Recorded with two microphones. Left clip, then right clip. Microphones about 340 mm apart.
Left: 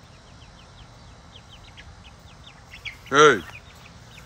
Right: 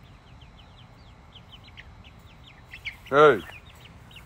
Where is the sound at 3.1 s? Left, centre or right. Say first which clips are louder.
Left 2 dB; centre.